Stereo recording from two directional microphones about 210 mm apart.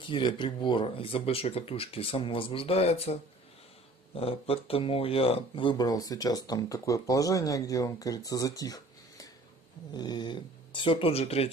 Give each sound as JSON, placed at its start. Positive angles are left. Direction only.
{"t": 0.0, "sound": "speech", "side_deg": 20}